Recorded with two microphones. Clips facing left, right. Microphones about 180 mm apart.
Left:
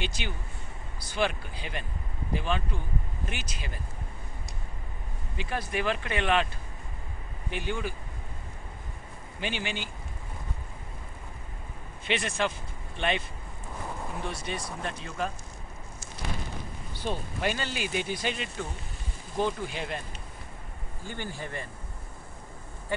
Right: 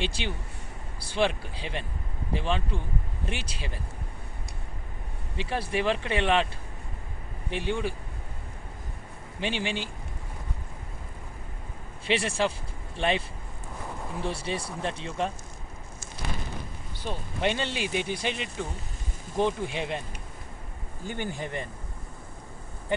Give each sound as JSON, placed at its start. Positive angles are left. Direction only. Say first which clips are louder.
{"t": 0.0, "sound": "speech", "louder": "right 3 dB", "side_deg": -30}
{"t": 5.4, "sound": "speech", "louder": "right 3 dB", "side_deg": -30}
{"t": 7.5, "sound": "speech", "louder": "right 3 dB", "side_deg": -30}
{"t": 9.4, "sound": "speech", "louder": "right 3 dB", "side_deg": -30}
{"t": 12.1, "sound": "speech", "louder": "right 3 dB", "side_deg": -30}
{"t": 14.2, "sound": "speech", "louder": "right 6 dB", "side_deg": -30}
{"t": 17.4, "sound": "speech", "louder": "right 6 dB", "side_deg": -25}